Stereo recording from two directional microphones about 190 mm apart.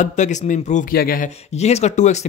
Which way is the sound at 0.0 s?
40° left (ahead or behind).